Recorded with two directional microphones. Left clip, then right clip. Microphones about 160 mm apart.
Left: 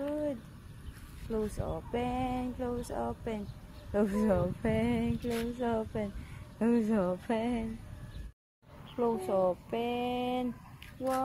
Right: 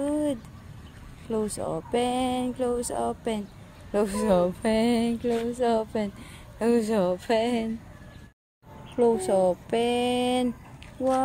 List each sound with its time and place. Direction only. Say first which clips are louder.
1.3 s speech: right 7 dB; 40° right (ahead or behind)
8.9 s speech: right 8 dB; 50° right (ahead or behind)